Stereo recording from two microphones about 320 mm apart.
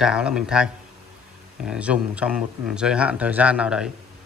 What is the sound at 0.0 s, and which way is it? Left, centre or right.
Speech, centre.